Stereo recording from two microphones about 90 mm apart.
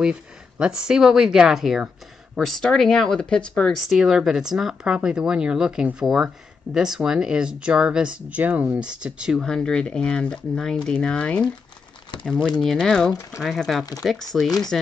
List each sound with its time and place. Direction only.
0.0 s speech: 10° right (ahead or behind); by 3.8 s 10° left (ahead or behind)
3.8 s speech: 5° right (ahead or behind)
9.4 s speech: 10° left (ahead or behind)
12.4 s speech: 5° left (ahead or behind)